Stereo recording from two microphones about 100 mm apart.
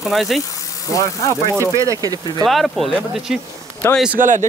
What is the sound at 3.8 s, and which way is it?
Speech, 20° left (ahead or behind).